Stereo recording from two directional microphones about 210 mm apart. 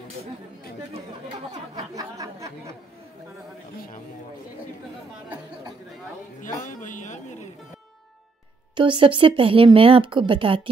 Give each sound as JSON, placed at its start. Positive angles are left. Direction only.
{"t": 1.8, "sound": "speech", "side_deg": -15}
{"t": 6.4, "sound": "a man's voice", "side_deg": 35}
{"t": 8.7, "sound": "speech", "side_deg": -25}